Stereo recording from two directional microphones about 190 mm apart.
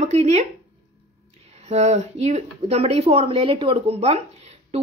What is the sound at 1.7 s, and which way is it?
Speech, 35° right (ahead or behind).